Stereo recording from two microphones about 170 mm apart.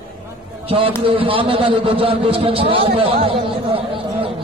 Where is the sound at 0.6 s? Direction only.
35° right (ahead or behind).